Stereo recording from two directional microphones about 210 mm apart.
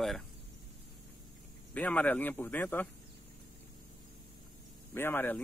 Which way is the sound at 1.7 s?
5° left (ahead or behind).